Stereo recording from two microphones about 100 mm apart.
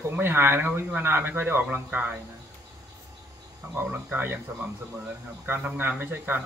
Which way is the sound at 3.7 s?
20° right (ahead or behind).